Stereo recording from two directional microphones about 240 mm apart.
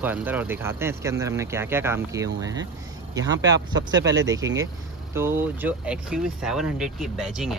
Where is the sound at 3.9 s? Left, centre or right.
Right.